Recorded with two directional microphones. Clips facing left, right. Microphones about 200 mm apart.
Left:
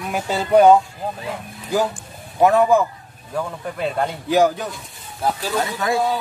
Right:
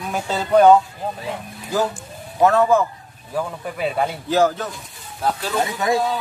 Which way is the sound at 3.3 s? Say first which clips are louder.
Even; 5° right (ahead or behind).